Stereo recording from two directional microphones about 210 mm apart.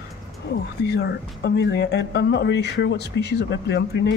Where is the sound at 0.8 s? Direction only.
50° left (ahead or behind).